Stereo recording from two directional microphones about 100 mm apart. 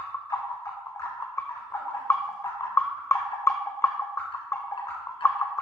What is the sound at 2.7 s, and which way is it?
Music, 25° left (ahead or behind).